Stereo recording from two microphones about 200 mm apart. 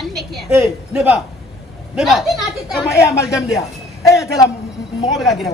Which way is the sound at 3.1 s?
15° left (ahead or behind).